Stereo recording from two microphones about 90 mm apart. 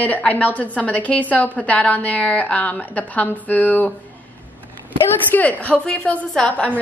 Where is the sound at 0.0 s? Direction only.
20° left (ahead or behind).